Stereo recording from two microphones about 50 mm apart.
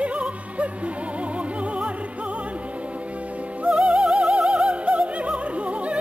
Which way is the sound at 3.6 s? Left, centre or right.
Right.